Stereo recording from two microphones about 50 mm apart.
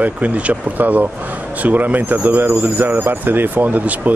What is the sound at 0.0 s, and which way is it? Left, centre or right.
Speech, right.